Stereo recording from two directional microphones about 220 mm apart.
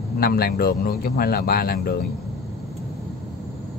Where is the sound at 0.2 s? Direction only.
45° left (ahead or behind).